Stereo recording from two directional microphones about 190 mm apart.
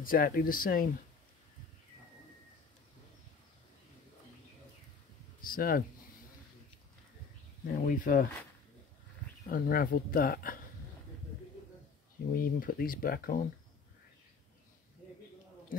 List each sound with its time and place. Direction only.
0.0 s speech: 50° left (ahead or behind)
5.4 s speech: 50° left (ahead or behind)
7.8 s speech: 45° left (ahead or behind)
9.5 s speech: 50° left (ahead or behind)
12.4 s speech: 50° left (ahead or behind)